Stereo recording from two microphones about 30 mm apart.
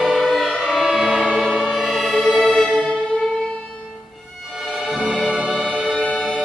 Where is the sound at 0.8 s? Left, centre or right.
Centre.